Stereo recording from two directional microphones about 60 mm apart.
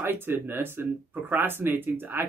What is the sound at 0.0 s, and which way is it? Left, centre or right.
Speech, right.